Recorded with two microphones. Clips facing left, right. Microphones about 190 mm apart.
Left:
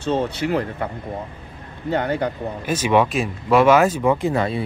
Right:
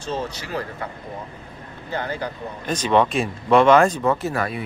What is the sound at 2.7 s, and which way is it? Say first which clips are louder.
Speech: left 1 dB; 10° left (ahead or behind).